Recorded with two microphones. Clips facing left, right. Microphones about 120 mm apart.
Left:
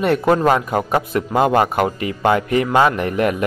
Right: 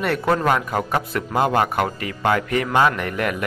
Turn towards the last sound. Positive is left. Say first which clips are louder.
# left 4 dB
turn(degrees=25)  # may be behind; listen again after turning